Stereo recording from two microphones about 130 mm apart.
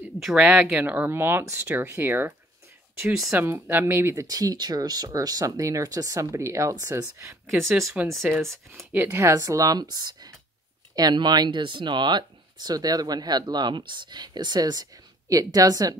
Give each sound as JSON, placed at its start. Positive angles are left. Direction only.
{"t": 0.2, "sound": "speech", "side_deg": -5}
{"t": 3.1, "sound": "speech", "side_deg": -5}
{"t": 3.3, "sound": "speech", "side_deg": -15}
{"t": 8.1, "sound": "speech", "side_deg": 0}
{"t": 8.9, "sound": "speech", "side_deg": -20}